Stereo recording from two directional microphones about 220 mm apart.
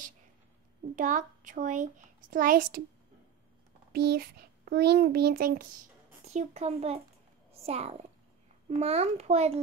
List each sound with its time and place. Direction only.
0.9 s a child's voice: 35° right (ahead or behind)
3.9 s a child's voice: 45° right (ahead or behind)
6.2 s a child's voice: 30° right (ahead or behind)